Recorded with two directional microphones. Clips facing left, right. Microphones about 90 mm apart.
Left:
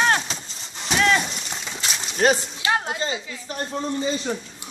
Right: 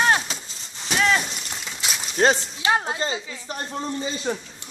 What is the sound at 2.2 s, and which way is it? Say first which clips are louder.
Speech: even; 25° right (ahead or behind).